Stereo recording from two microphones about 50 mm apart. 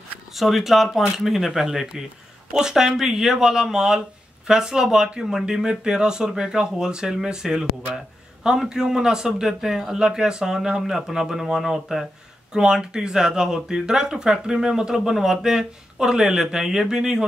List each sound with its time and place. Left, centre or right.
0.4 s speech: centre